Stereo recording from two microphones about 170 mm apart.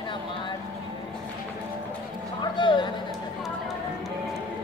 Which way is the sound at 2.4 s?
25° left (ahead or behind).